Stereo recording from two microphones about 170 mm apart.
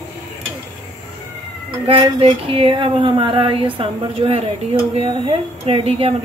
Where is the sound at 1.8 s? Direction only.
35° right (ahead or behind).